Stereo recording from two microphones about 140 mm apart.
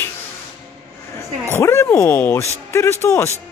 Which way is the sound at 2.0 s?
15° left (ahead or behind).